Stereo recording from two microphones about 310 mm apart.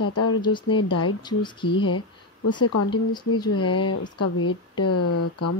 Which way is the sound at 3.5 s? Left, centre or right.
Left.